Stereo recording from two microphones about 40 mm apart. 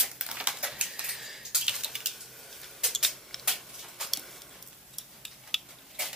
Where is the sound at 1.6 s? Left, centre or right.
Centre.